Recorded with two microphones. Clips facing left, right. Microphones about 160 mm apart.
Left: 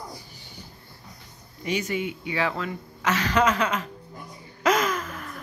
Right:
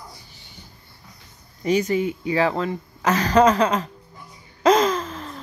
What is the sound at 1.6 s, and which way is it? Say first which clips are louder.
Speech: right 7 dB; 40° right (ahead or behind).